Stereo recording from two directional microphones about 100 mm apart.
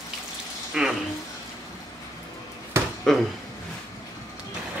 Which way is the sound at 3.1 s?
5° left (ahead or behind).